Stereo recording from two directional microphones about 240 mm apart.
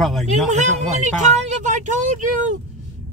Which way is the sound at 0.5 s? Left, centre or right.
Right.